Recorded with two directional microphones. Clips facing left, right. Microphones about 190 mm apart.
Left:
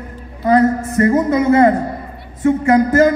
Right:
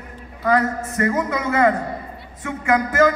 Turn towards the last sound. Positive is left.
turn(degrees=35)  # may be behind; listen again after turning